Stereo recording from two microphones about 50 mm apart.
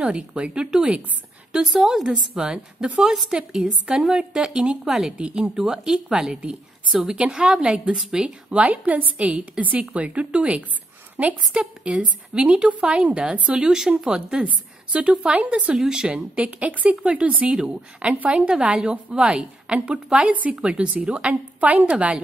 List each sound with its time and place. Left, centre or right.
0.0 s a woman's voice: right
8.5 s a woman's voice: right
15.7 s a woman's voice: centre
16.3 s a woman's voice: right
18.1 s a woman's voice: right
19.1 s a woman's voice: right